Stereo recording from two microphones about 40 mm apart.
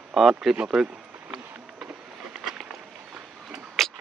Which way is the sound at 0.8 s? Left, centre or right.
Centre.